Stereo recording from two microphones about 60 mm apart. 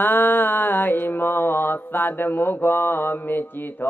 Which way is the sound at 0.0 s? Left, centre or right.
Left.